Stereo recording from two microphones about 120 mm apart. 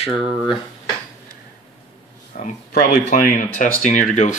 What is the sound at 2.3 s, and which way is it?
Speech, 90° left.